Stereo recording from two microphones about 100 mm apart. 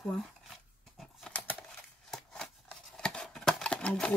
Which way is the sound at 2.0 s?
5° left (ahead or behind).